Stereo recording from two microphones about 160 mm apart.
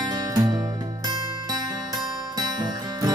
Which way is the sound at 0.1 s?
25° right (ahead or behind).